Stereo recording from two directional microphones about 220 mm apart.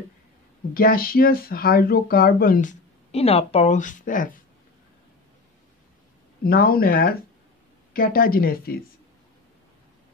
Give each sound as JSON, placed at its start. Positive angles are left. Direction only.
{"t": 0.7, "sound": "speech", "side_deg": 40}
{"t": 6.4, "sound": "speech", "side_deg": 45}